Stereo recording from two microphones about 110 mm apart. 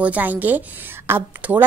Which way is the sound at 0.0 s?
15° right (ahead or behind).